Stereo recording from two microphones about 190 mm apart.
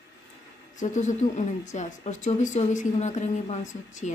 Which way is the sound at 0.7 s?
40° left (ahead or behind).